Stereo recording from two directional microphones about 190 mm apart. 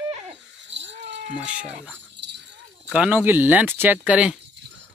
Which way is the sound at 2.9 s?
5° right (ahead or behind).